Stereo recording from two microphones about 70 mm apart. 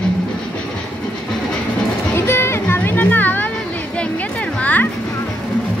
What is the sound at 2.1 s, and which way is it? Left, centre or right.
Music, left.